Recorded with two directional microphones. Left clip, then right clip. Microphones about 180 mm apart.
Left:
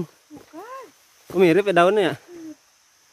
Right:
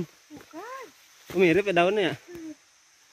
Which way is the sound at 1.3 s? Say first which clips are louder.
Left 5 dB; 25° left (ahead or behind).